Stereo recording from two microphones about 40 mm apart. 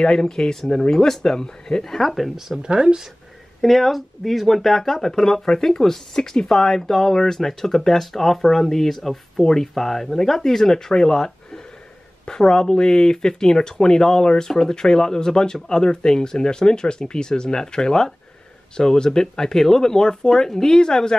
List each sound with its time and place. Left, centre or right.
0.0 s speech: centre
2.6 s speech: right
3.6 s speech: centre